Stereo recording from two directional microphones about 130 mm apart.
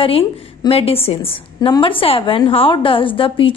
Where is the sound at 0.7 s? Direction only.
50° left (ahead or behind).